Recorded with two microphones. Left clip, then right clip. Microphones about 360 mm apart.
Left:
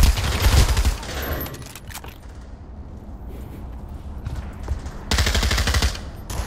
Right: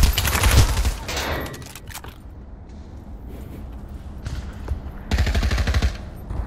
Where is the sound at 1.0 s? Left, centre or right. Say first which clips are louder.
Right 3 dB; centre.